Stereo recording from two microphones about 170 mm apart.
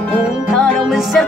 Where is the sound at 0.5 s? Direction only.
Centre (ahead or behind).